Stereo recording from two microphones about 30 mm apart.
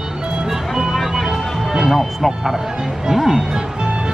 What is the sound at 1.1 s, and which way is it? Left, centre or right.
Music, centre.